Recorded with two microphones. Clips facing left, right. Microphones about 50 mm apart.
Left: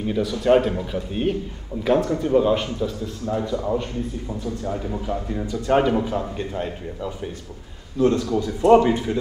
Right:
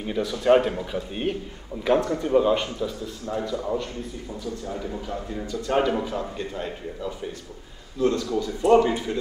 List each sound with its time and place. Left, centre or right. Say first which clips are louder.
0.0 s a man's voice: left 2 dB; centre
5.1 s a man's voice: left 5 dB; centre
8.1 s speech: left 4 dB; left
8.6 s a man's voice: left 3 dB; centre